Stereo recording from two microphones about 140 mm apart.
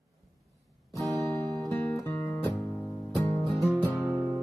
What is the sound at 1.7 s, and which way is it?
Music, 10° left (ahead or behind).